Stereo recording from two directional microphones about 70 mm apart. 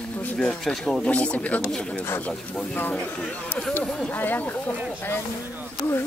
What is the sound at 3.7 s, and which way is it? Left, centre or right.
Speech, left.